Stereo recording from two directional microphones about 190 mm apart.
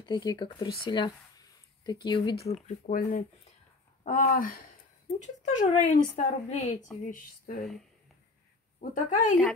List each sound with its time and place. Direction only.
0.0 s speech: 20° left (ahead or behind)
2.9 s speech: 45° left (ahead or behind)
8.9 s speech: 40° left (ahead or behind)